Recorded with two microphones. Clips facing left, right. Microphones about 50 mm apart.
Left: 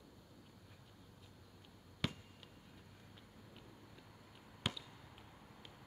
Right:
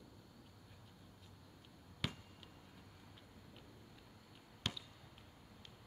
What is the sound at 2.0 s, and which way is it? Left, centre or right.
Fireworks, centre.